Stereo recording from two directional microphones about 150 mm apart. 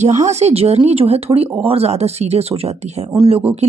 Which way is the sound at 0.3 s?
45° right (ahead or behind).